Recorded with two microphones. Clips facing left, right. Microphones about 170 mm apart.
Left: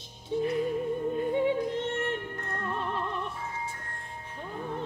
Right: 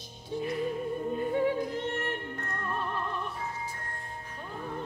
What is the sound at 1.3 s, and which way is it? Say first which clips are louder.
Yodeling: left 1 dB; 20° left (ahead or behind).